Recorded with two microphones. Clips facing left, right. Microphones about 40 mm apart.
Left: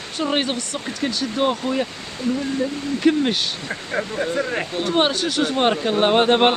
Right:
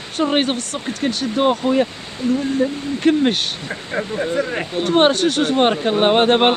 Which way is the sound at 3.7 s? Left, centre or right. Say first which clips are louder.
Right 2 dB; centre.